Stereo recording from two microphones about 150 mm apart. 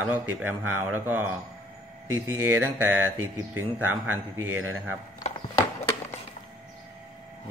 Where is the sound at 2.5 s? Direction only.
10° right (ahead or behind).